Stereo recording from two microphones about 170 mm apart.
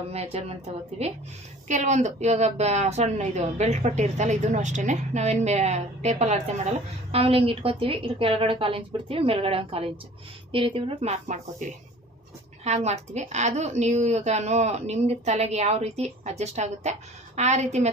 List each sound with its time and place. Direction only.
0.1 s a woman's voice: 35° right (ahead or behind)